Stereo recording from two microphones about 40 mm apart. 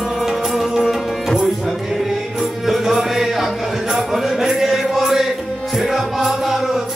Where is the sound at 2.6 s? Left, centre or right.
Centre.